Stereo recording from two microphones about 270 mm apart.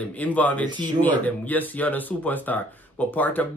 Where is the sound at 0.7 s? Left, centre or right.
Centre.